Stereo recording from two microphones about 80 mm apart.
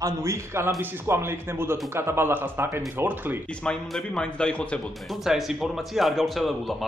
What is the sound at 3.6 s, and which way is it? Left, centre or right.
Speech, centre.